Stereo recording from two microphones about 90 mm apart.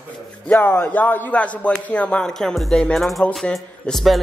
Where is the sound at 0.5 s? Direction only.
20° left (ahead or behind).